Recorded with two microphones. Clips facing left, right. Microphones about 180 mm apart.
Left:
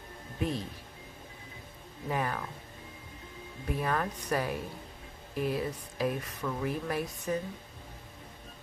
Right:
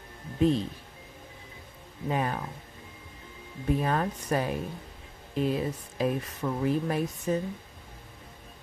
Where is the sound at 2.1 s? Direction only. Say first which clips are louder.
Right 3 dB; 25° right (ahead or behind).